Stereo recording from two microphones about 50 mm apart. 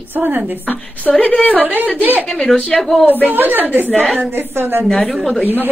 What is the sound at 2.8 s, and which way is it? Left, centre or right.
Speech, centre.